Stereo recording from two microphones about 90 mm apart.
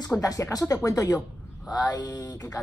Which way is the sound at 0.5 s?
40° left (ahead or behind).